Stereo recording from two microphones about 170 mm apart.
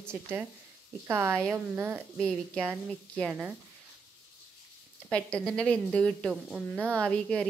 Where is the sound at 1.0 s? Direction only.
15° right (ahead or behind).